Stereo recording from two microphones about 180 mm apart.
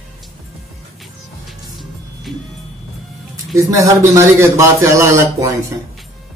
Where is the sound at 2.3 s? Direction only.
Centre (ahead or behind).